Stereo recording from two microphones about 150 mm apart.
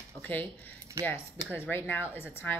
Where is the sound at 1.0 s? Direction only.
20° right (ahead or behind).